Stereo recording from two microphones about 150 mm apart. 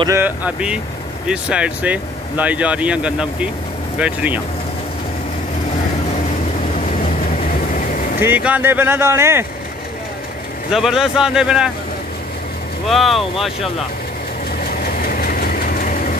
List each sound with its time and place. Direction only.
0.2 s speech: 10° right (ahead or behind)
7.7 s vehicle: 60° left (ahead or behind)
8.2 s speech: 10° right (ahead or behind)
10.7 s speech: 5° right (ahead or behind)
12.8 s speech: centre (ahead or behind)
14.8 s vehicle: 75° left (ahead or behind)